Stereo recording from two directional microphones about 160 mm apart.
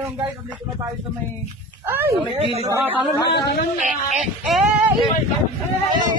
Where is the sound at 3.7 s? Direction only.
50° right (ahead or behind).